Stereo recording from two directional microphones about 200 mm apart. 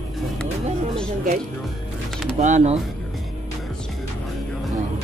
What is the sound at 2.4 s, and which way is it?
Speech, 35° right (ahead or behind).